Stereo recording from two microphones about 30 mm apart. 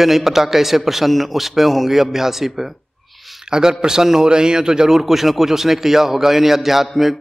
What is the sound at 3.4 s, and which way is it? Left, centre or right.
A man's voice, right.